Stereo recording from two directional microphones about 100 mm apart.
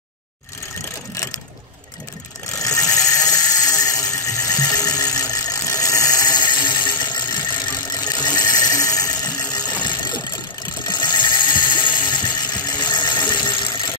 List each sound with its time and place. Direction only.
2.6 s sheep: 35° left (ahead or behind)
7.9 s a sound: 40° left (ahead or behind)
10.9 s sheep: 45° left (ahead or behind)